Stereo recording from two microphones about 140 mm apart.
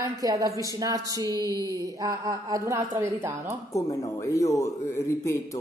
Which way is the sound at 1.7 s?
25° right (ahead or behind).